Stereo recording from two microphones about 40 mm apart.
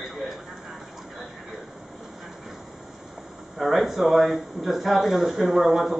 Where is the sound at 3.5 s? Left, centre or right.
Centre.